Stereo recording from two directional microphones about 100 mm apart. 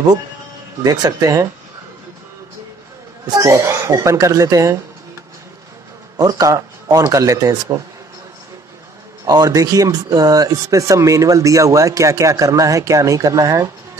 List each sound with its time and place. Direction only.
0.8 s speech: 35° right (ahead or behind)
3.3 s speech: 30° right (ahead or behind)
6.1 s speech: 40° right (ahead or behind)
9.2 s speech: 40° right (ahead or behind)